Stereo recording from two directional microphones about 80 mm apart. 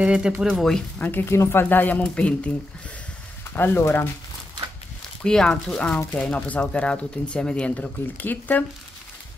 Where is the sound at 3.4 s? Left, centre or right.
Left.